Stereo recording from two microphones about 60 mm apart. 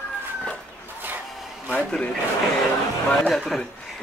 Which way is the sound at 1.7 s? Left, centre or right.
Left.